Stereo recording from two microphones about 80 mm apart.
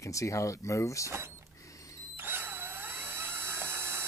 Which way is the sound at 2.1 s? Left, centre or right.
Right.